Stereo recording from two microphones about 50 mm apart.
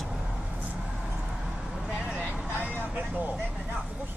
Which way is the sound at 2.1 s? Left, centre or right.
Right.